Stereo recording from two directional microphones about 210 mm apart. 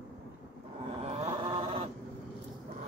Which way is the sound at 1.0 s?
30° right (ahead or behind).